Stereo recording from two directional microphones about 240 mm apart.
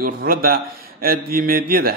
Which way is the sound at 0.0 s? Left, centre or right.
Right.